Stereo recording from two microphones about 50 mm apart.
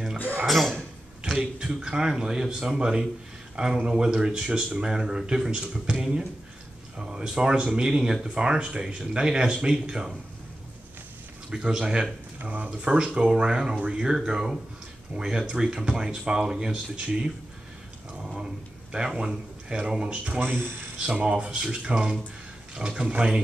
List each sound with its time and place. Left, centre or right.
0.5 s speech: centre
1.2 s speech: centre
11.5 s a man's voice: centre
20.3 s speech: right
21.0 s speech: centre